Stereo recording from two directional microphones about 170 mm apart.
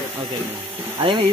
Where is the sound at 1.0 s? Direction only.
30° right (ahead or behind).